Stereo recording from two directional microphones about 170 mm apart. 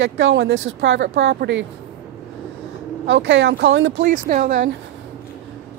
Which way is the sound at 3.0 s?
90° right.